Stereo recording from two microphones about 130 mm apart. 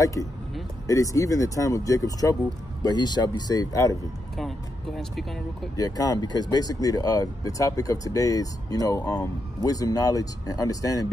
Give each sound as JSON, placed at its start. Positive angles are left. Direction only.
{"t": 0.0, "sound": "speech", "side_deg": 25}
{"t": 4.4, "sound": "speech", "side_deg": 0}
{"t": 5.8, "sound": "speech", "side_deg": 30}